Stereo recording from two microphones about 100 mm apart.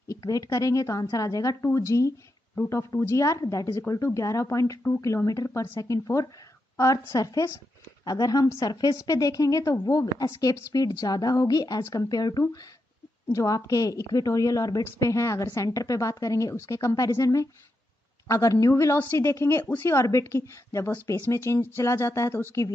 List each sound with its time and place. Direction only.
0.1 s a woman's voice: 35° left (ahead or behind)
2.5 s speech: 20° left (ahead or behind)
2.8 s a woman's voice: 35° left (ahead or behind)